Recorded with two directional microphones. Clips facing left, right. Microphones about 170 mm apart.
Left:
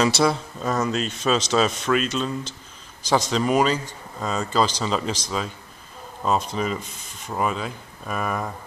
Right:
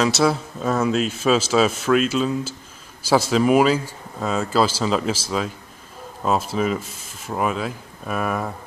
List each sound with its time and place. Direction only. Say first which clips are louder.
0.0 s speech: right 1 dB; centre (ahead or behind)